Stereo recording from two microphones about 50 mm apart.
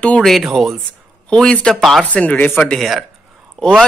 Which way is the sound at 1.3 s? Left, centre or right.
Centre.